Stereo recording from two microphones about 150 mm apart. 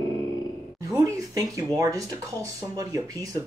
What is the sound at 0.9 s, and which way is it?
Speech, 25° right (ahead or behind).